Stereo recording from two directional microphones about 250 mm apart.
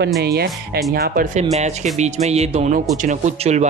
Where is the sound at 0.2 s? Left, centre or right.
Right.